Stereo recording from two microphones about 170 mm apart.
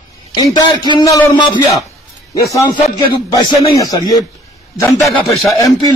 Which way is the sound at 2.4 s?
20° left (ahead or behind).